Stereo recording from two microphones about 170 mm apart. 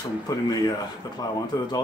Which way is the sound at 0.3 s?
25° left (ahead or behind).